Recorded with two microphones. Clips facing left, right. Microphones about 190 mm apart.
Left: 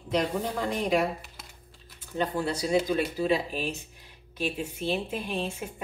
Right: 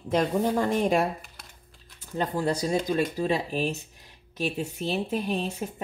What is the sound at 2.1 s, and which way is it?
Speech, 40° right (ahead or behind).